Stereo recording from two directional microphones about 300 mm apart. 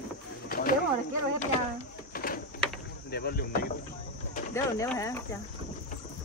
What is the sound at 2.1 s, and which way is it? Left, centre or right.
Printer, left.